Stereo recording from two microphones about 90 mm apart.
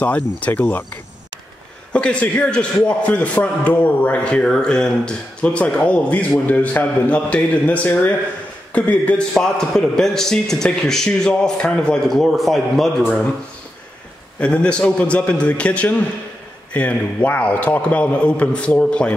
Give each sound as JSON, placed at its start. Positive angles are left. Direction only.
{"t": 0.0, "sound": "speech", "side_deg": 20}
{"t": 1.9, "sound": "a man's voice", "side_deg": 10}
{"t": 14.4, "sound": "a man's voice", "side_deg": 10}